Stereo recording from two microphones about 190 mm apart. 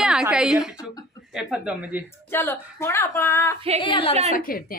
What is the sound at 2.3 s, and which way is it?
A woman's voice, 10° left (ahead or behind).